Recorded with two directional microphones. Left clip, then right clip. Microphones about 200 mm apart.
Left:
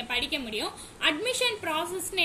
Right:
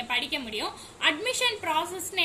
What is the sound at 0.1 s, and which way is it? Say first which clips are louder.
A woman's voice: even; 10° right (ahead or behind).